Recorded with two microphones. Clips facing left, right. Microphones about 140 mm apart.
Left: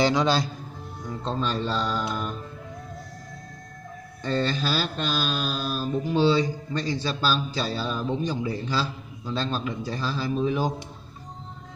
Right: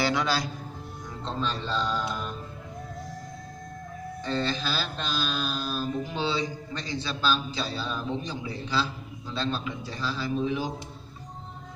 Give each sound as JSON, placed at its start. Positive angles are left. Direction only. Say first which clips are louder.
{"t": 0.0, "sound": "a man's voice", "louder": "left 5 dB", "side_deg": 20}
{"t": 1.2, "sound": "mantra", "louder": "left 4 dB", "side_deg": 45}
{"t": 4.2, "sound": "mantra", "louder": "left 4 dB", "side_deg": 45}